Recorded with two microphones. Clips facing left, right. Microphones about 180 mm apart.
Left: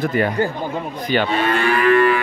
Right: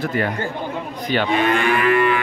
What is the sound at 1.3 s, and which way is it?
Speech, 15° right (ahead or behind).